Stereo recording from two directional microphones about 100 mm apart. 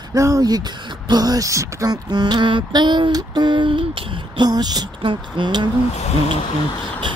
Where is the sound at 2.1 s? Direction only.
45° right (ahead or behind).